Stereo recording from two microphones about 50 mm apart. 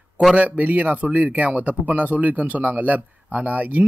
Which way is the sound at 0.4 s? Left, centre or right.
Right.